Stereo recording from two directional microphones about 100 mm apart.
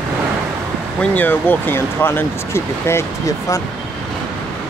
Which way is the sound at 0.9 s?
20° left (ahead or behind).